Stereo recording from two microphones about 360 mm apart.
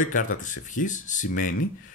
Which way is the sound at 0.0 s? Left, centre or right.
Left.